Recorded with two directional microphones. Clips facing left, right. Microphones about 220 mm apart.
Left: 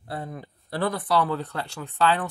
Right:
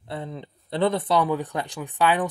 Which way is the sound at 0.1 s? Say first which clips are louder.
Right 1 dB; 25° right (ahead or behind).